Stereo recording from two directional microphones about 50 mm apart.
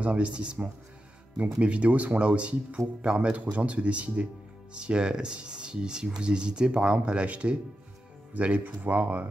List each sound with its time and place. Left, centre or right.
0.0 s speech: right